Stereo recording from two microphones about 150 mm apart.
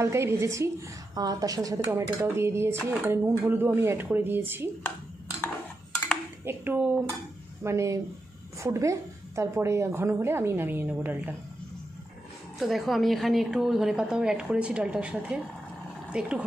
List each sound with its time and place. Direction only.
0.0 s a woman's voice: 20° right (ahead or behind)
6.4 s a woman's voice: 15° right (ahead or behind)
12.5 s a woman's voice: centre (ahead or behind)